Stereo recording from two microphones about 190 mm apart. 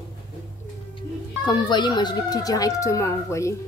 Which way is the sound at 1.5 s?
25° left (ahead or behind).